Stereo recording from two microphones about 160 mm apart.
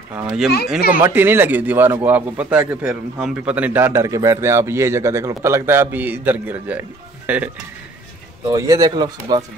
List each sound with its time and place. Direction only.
0.1 s speech: 10° right (ahead or behind)
8.5 s speech: 20° right (ahead or behind)